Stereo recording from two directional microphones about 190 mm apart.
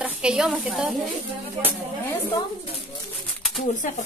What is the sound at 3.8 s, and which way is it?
Speech, 40° left (ahead or behind).